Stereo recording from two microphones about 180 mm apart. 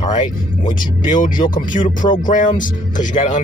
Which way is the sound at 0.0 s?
40° left (ahead or behind).